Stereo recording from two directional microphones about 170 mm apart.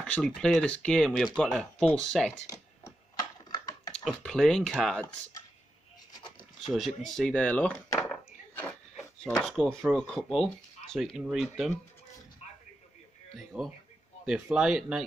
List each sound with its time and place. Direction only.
0.0 s speech: 5° left (ahead or behind)
3.4 s typing: 25° left (ahead or behind)
4.0 s speech: 5° left (ahead or behind)
6.7 s speech: centre (ahead or behind)
13.5 s speech: centre (ahead or behind)